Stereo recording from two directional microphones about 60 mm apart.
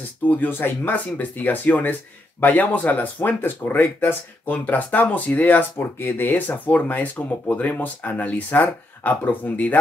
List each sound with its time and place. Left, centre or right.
0.3 s speech: left